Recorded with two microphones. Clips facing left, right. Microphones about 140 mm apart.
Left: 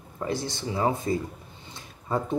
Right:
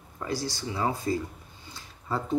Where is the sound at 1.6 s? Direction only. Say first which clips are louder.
Left 2 dB; 20° left (ahead or behind).